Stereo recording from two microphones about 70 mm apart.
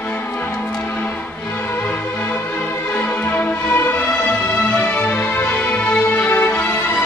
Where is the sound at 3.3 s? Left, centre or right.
Left.